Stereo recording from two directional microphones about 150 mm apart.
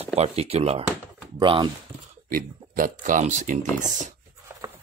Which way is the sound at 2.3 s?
65° right (ahead or behind).